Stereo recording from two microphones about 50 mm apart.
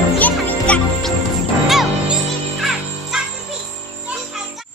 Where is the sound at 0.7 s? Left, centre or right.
Left.